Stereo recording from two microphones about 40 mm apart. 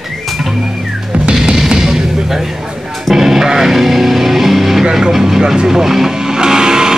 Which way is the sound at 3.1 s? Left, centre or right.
Centre.